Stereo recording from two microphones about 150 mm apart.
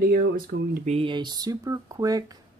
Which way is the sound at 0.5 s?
90° right.